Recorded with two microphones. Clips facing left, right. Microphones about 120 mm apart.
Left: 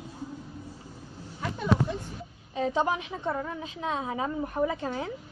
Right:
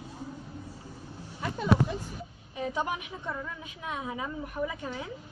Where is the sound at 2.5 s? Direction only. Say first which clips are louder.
Left 5 dB; 25° left (ahead or behind).